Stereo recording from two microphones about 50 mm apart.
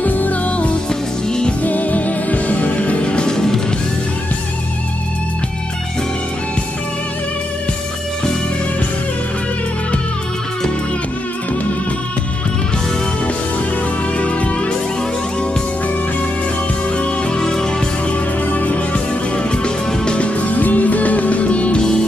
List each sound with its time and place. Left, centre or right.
0.0 s music: left
0.8 s music: centre
1.6 s music: left; by 3.6 s centre
14.1 s music: left
16.9 s music: left
18.4 s music: left
19.3 s music: centre